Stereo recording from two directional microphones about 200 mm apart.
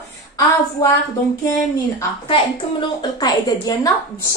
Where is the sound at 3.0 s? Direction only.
20° left (ahead or behind).